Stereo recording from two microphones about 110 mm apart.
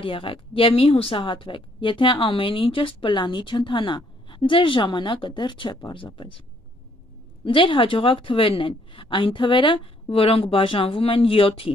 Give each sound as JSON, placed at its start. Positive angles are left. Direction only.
{"t": 0.0, "sound": "speech", "side_deg": 55}
{"t": 7.4, "sound": "speech", "side_deg": 50}